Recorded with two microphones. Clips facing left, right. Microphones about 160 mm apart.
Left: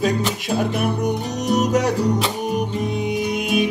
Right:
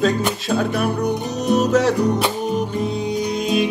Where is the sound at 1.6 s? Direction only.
15° left (ahead or behind).